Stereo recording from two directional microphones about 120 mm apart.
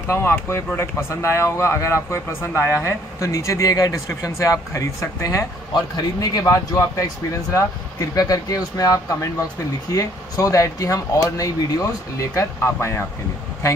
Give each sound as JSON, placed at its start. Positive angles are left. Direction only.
{"t": 0.1, "sound": "speech", "side_deg": 20}